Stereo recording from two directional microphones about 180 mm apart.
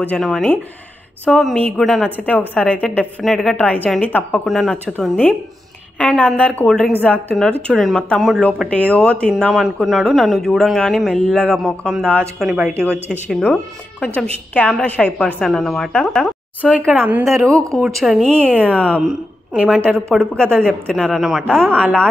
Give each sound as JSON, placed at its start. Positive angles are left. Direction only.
{"t": 0.1, "sound": "a woman's voice", "side_deg": 5}
{"t": 14.0, "sound": "a woman's voice", "side_deg": 10}
{"t": 16.9, "sound": "a woman's voice", "side_deg": -10}